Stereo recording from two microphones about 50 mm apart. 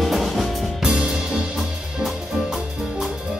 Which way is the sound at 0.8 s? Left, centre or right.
Centre.